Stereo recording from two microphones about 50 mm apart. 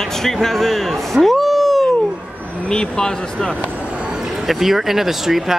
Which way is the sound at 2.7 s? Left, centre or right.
Centre.